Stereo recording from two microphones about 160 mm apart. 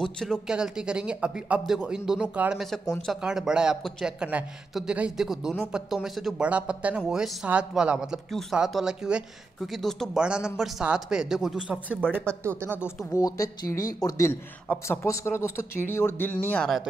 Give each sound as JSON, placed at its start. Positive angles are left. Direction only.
{"t": 0.0, "sound": "speech", "side_deg": 5}
{"t": 12.8, "sound": "a man's voice", "side_deg": 20}